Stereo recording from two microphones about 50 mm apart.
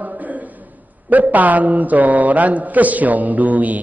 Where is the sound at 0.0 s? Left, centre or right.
Right.